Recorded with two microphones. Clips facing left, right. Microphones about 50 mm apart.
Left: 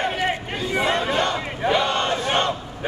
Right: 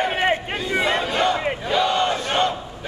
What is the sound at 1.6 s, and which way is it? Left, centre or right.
Battle cry, left.